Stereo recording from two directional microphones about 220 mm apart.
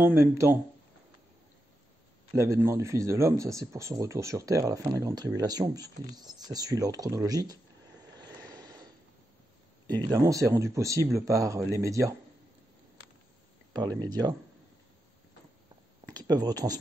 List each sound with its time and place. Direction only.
0.0 s speech: 10° right (ahead or behind)
2.3 s speech: 15° right (ahead or behind)
8.2 s vehicle: 15° right (ahead or behind)
9.8 s speech: 20° right (ahead or behind)
13.9 s speech: 15° right (ahead or behind)
16.1 s speech: 20° right (ahead or behind)